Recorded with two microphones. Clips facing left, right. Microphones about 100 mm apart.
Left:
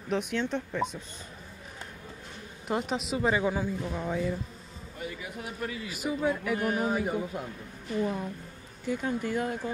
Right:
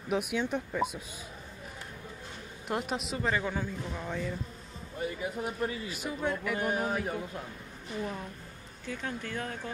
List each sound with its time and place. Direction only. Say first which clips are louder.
0.1 s speech: left 1 dB; 10° right (ahead or behind)
2.7 s speech: left 3 dB; centre (ahead or behind)
3.2 s speech: left 5 dB; 15° left (ahead or behind)
5.0 s speech: right 4 dB; 30° right (ahead or behind)
5.9 s speech: left 4 dB; 5° left (ahead or behind)